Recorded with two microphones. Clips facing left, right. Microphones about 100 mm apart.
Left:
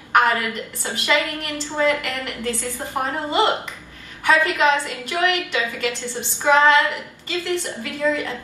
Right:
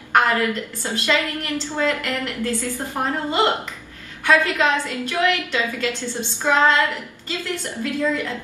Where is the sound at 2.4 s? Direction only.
20° left (ahead or behind).